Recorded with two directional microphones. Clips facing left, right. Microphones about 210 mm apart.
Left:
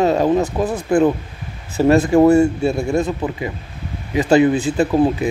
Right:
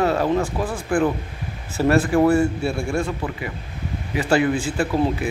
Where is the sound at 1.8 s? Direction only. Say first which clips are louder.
Left 5 dB; 20° left (ahead or behind).